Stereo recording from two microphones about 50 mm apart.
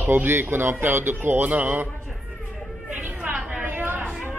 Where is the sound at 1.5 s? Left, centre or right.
Right.